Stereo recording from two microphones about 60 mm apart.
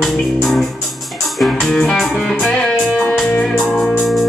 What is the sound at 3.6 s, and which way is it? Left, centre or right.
Music, centre.